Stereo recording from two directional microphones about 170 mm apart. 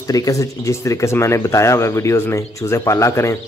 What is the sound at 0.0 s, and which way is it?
Speech, 20° left (ahead or behind).